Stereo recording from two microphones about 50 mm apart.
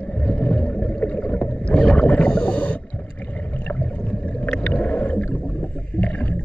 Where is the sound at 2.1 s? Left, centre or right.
Left.